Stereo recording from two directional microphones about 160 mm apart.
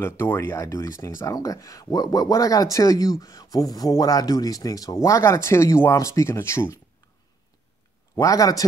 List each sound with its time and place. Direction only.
0.0 s speech: 15° left (ahead or behind)
8.2 s speech: 20° left (ahead or behind)